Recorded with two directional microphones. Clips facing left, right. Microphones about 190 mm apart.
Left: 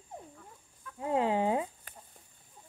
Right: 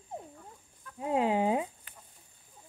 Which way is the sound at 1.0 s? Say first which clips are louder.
Right 1 dB; 15° right (ahead or behind).